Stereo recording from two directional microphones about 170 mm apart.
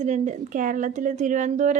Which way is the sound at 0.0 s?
45° right (ahead or behind).